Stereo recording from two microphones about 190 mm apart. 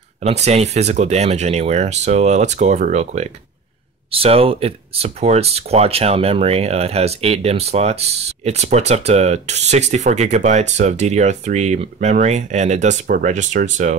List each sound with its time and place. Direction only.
0.2 s speech: 35° right (ahead or behind)